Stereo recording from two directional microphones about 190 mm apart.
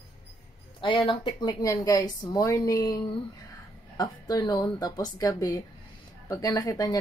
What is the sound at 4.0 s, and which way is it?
Speech, 20° left (ahead or behind).